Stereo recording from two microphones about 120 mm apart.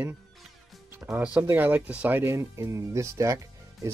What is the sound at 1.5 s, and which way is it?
Speech, 15° right (ahead or behind).